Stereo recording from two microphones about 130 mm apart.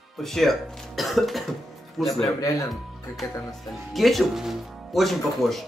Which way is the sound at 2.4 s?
25° left (ahead or behind).